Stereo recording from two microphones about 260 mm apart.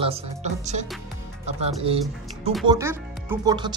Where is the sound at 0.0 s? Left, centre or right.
Right.